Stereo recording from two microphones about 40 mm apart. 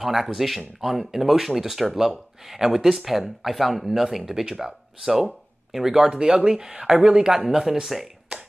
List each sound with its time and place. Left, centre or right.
0.0 s speech: centre
6.0 s speech: centre
7.4 s speech: centre